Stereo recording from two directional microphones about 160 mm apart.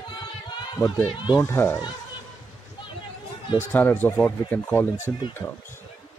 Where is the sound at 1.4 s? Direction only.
15° left (ahead or behind).